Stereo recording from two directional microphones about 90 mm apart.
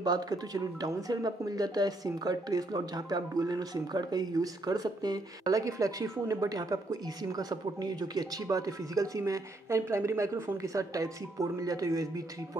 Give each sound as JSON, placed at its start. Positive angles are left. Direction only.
{"t": 0.0, "sound": "speech", "side_deg": -45}